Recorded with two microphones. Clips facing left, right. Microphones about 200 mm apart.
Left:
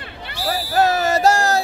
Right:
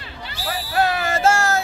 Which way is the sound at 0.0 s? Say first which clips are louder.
Left 3 dB; 60° left (ahead or behind).